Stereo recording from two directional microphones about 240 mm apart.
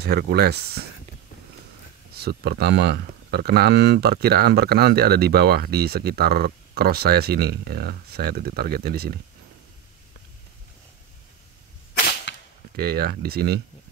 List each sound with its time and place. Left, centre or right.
0.0 s speech: right
2.1 s speech: right
12.3 s cap gun: left
12.7 s speech: right